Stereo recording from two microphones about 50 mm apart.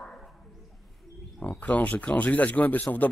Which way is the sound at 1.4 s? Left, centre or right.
Left.